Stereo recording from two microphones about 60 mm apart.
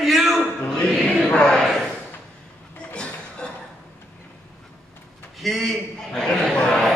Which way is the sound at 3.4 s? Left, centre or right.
Centre.